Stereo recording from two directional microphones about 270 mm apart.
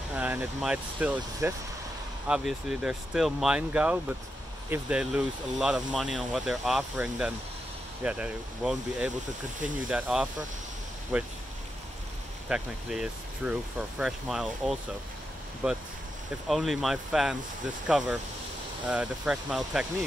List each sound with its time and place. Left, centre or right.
0.1 s speech: centre
12.4 s speech: centre